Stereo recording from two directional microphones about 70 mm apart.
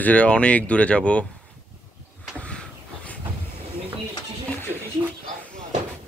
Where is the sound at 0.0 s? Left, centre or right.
Centre.